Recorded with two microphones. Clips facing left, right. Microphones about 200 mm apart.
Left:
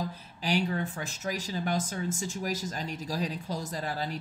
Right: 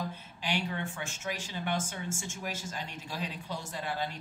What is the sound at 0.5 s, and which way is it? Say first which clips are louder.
Speech: left 5 dB; 40° left (ahead or behind).